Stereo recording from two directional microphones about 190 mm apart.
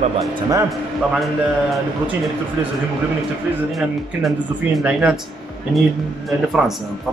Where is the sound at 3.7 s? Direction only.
Centre (ahead or behind).